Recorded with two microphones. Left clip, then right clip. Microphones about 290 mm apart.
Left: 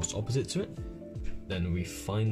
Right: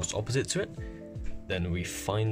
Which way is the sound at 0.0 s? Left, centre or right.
Right.